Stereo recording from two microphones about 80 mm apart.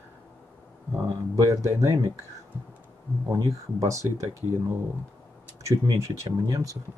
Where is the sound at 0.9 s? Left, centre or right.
Right.